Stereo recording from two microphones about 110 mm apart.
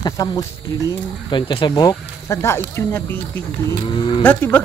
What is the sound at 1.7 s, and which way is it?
Speech, 30° left (ahead or behind).